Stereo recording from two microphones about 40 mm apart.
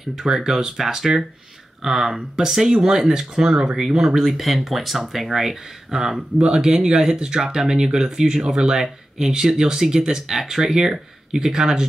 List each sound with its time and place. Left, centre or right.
0.1 s speech: centre
4.2 s speech: centre